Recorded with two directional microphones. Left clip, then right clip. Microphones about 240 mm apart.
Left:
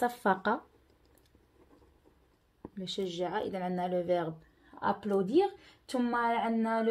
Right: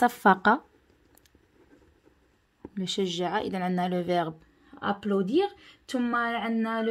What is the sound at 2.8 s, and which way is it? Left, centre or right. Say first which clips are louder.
Speech: right 6 dB; right.